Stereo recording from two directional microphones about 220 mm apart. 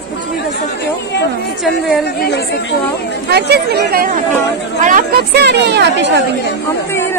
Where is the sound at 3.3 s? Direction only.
45° right (ahead or behind).